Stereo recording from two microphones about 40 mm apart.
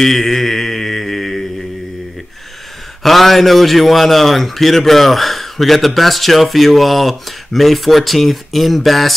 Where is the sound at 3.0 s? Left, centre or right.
Centre.